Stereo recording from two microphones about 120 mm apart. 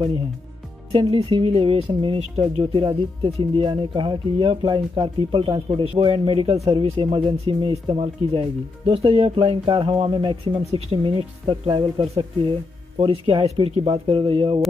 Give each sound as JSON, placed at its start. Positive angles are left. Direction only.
{"t": 0.9, "sound": "speech", "side_deg": -50}
{"t": 10.1, "sound": "speech", "side_deg": -40}
{"t": 10.7, "sound": "speech", "side_deg": -50}